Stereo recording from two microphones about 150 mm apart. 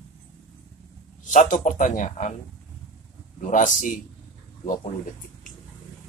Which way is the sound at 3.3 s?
60° left (ahead or behind).